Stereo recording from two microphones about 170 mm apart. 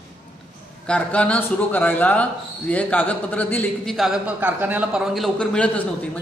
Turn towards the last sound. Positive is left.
turn(degrees=5)  # may be behind; listen again after turning